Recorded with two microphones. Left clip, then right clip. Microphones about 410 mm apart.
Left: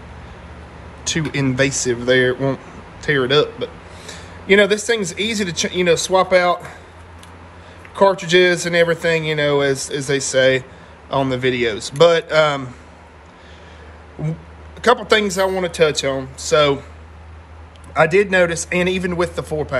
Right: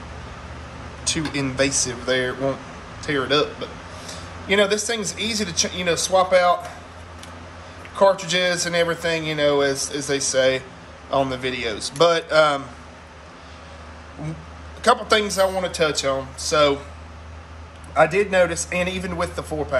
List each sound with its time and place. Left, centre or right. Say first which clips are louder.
1.0 s a man's voice: left 4 dB; centre
7.9 s a man's voice: left 4 dB; centre
14.8 s a man's voice: left 3 dB; centre
17.9 s a man's voice: left 3 dB; left